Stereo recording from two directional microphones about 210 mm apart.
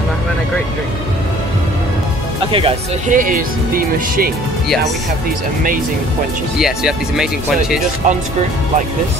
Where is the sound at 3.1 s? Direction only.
40° right (ahead or behind).